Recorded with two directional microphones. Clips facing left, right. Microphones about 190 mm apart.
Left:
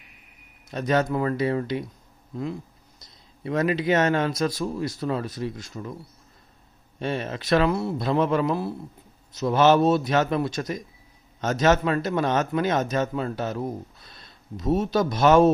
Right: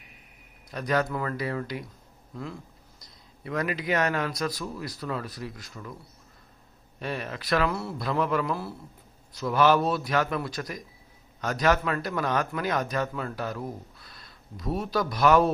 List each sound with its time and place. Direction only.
0.7 s speech: 25° left (ahead or behind)
7.0 s speech: 25° left (ahead or behind)